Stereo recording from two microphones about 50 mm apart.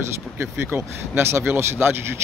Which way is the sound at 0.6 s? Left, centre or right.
Right.